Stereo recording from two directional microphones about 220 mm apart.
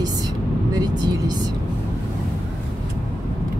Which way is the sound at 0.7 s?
20° right (ahead or behind).